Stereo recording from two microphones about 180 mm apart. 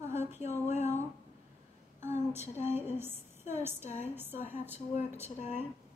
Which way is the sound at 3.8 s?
40° left (ahead or behind).